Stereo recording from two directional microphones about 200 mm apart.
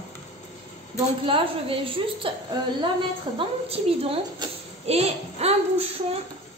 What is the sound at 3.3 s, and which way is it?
A woman's voice, 30° right (ahead or behind).